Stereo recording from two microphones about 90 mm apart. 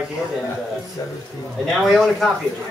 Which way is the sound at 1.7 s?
Centre (ahead or behind).